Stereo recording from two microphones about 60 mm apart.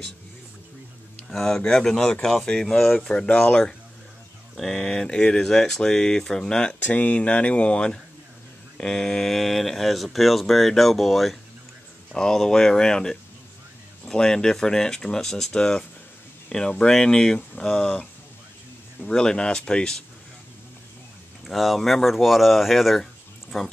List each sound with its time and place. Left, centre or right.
1.3 s speech: centre
6.8 s speech: left; by 11.3 s centre
12.2 s speech: centre
21.5 s speech: centre